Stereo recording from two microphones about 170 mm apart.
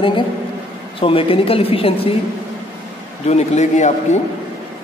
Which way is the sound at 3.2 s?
40° left (ahead or behind).